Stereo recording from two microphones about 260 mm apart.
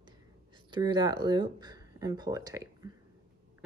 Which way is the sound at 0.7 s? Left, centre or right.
Centre.